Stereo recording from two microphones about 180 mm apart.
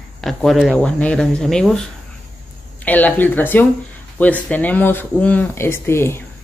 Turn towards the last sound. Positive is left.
turn(degrees=15)  # may be behind; listen again after turning